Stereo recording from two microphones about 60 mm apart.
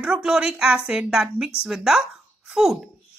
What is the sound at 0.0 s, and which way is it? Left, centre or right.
A woman's voice, centre.